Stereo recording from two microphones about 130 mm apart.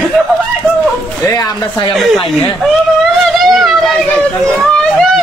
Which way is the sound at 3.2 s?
Centre (ahead or behind).